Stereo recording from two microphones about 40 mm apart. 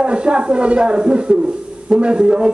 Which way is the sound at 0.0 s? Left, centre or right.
Right.